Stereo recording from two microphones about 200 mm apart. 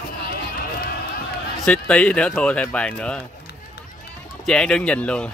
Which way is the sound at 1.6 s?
5° left (ahead or behind).